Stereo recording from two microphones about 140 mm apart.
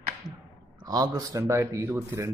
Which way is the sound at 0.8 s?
30° right (ahead or behind).